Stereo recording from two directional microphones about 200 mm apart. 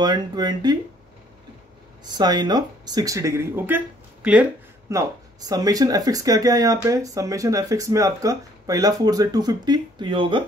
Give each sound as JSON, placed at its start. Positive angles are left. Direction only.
{"t": 0.0, "sound": "speech", "side_deg": -20}
{"t": 2.0, "sound": "speech", "side_deg": -20}